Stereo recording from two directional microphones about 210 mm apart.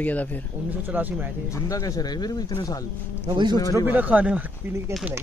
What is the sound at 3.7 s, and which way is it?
Speech, 10° right (ahead or behind).